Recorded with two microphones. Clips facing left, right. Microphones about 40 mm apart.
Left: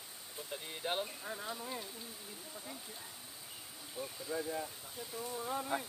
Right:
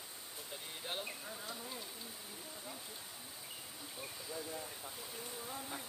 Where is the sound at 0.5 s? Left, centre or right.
Centre.